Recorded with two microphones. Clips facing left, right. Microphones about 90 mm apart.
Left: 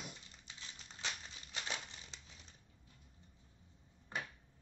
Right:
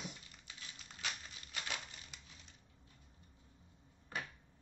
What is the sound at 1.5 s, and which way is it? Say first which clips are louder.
Crumpling: even; 25° left (ahead or behind).